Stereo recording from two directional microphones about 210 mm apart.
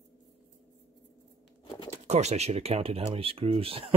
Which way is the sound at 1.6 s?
25° left (ahead or behind).